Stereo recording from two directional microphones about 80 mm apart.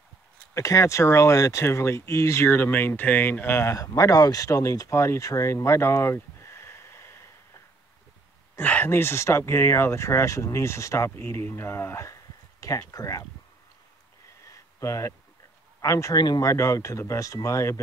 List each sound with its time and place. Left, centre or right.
0.6 s speech: left
8.5 s speech: left
14.5 s a sound: left
15.8 s speech: left